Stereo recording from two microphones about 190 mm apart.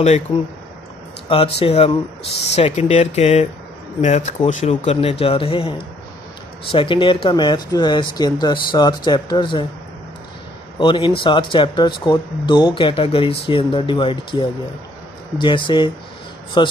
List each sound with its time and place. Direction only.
1.3 s speech: 30° left (ahead or behind)
10.8 s speech: 25° left (ahead or behind)